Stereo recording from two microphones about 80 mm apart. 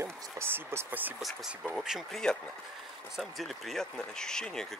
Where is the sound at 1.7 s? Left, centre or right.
Centre.